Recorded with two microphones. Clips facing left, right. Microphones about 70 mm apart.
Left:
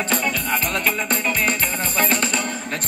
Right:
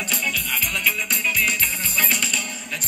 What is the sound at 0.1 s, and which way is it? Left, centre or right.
Music, left.